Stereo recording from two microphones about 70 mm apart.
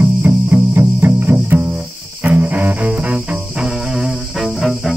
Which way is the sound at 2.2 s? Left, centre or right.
Right.